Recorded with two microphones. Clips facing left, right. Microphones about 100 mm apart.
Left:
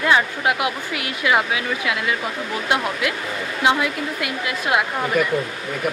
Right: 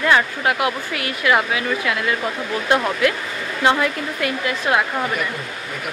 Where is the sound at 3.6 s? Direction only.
10° left (ahead or behind).